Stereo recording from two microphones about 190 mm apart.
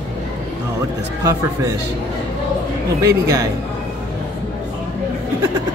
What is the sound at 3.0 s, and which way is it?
Speech, 15° right (ahead or behind).